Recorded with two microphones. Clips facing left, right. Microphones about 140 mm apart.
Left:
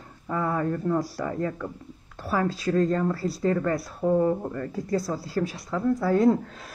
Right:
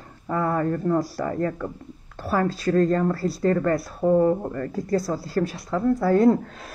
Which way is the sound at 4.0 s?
30° right (ahead or behind).